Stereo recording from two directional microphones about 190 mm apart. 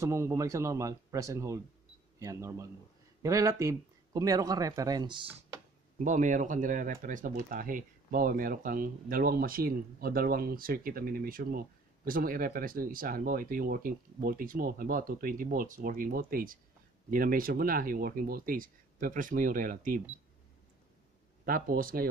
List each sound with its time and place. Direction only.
0.0 s speech: 15° right (ahead or behind)
5.9 s speech: 40° right (ahead or behind)
21.5 s speech: 50° right (ahead or behind)